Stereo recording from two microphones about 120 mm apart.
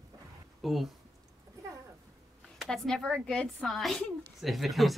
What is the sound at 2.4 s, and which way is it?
A woman's voice, 5° left (ahead or behind).